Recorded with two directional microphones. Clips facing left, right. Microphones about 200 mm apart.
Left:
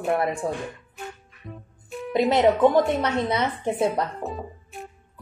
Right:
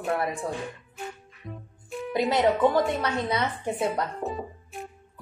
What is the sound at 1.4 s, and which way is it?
Music, centre (ahead or behind).